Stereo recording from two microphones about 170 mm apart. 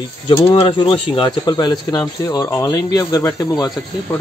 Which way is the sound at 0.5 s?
35° left (ahead or behind).